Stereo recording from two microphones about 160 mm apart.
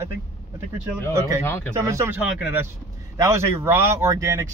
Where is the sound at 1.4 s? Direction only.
15° left (ahead or behind).